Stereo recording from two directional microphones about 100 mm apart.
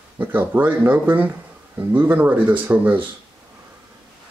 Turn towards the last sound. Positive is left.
turn(degrees=-15)  # may be behind; listen again after turning